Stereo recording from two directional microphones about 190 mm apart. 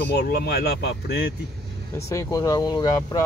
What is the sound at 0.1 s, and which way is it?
Speech, 55° left (ahead or behind).